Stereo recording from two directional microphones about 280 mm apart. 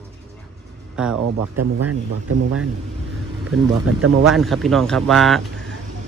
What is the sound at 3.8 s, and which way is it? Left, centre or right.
Speech, right.